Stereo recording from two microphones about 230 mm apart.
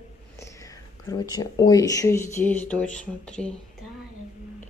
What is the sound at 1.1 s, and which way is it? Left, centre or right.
Speech, centre.